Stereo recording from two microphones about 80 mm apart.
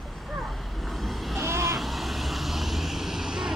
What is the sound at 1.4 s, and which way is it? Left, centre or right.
Vehicle, right.